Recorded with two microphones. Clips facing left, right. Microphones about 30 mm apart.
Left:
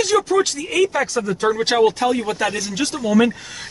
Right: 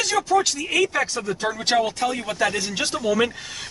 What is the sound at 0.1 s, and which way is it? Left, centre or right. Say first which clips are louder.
Speech: left 2 dB; centre.